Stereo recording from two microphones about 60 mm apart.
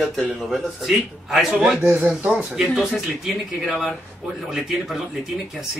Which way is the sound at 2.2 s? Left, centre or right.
Right.